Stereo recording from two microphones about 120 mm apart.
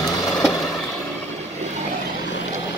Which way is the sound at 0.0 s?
Centre (ahead or behind).